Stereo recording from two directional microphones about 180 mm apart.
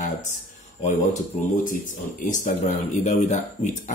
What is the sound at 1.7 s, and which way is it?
Speech, 45° left (ahead or behind).